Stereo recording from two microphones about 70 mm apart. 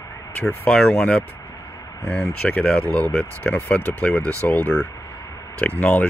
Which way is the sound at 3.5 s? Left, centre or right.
Left.